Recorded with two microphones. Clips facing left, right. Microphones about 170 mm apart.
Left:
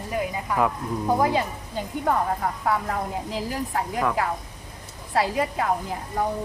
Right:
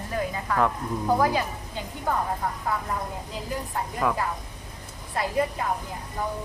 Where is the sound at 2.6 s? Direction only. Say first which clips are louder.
Left 6 dB; 80° left.